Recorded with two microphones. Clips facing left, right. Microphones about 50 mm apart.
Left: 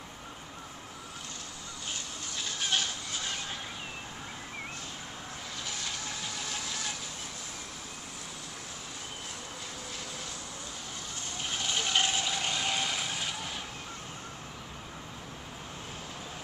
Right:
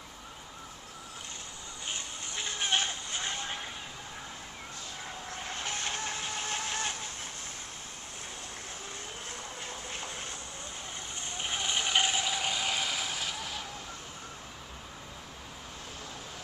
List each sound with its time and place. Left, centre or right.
1.9 s goat: right
5.5 s vehicle: right
11.3 s vehicle: right; by 13.6 s centre